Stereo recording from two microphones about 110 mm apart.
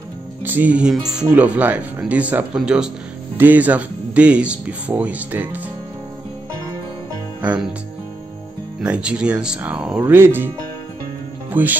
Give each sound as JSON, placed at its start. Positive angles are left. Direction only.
{"t": 0.4, "sound": "speech", "side_deg": -15}
{"t": 8.8, "sound": "speech", "side_deg": -10}
{"t": 10.0, "sound": "speech", "side_deg": -20}
{"t": 11.6, "sound": "speech", "side_deg": -15}